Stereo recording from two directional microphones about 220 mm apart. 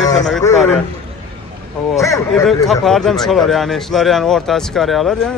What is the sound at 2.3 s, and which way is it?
A man's voice, centre (ahead or behind).